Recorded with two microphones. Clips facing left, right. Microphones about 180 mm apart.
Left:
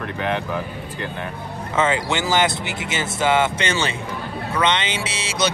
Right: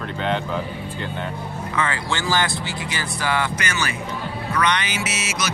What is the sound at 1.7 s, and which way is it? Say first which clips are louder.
Speech: left 5 dB; 20° left (ahead or behind).